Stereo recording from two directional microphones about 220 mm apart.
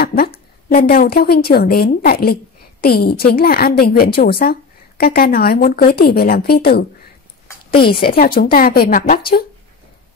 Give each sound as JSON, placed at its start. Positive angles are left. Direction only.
{"t": 0.0, "sound": "a sound", "side_deg": 40}
{"t": 0.8, "sound": "a woman's voice", "side_deg": 45}
{"t": 8.4, "sound": "a woman's voice", "side_deg": 40}